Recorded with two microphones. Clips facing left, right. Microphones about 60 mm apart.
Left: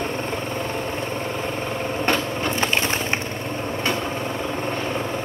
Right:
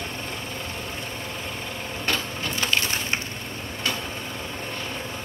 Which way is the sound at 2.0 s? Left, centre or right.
Left.